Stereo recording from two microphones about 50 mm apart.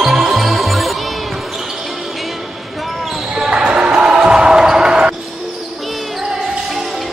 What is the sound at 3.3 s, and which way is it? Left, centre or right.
Basketball bounce, centre.